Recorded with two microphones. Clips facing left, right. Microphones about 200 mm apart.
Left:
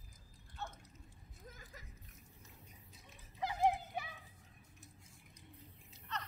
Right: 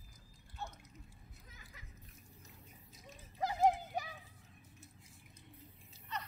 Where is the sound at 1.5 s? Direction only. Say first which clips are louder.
Left 4 dB; 45° left (ahead or behind).